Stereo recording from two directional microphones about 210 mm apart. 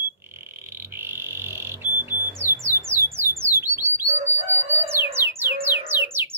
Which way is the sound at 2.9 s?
10° right (ahead or behind).